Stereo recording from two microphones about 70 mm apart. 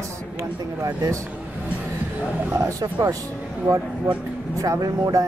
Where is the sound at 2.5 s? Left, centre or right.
Right.